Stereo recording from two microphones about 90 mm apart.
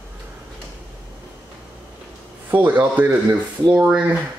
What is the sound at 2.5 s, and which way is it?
Speech, 20° right (ahead or behind).